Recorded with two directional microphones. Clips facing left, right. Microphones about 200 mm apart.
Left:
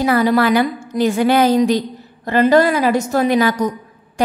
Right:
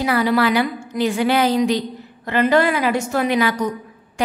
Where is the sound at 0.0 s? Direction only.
45° left (ahead or behind).